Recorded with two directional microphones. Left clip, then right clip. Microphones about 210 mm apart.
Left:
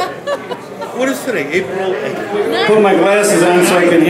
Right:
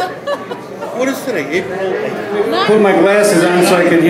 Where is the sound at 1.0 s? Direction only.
30° left (ahead or behind).